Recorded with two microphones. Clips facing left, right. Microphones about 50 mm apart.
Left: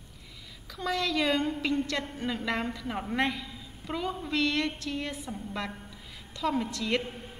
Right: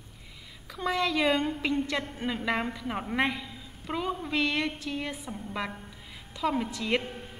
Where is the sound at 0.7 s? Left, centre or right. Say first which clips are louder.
Right 2 dB; centre.